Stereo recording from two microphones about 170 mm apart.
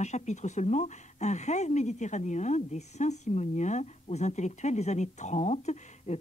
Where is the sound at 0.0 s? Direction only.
45° left (ahead or behind).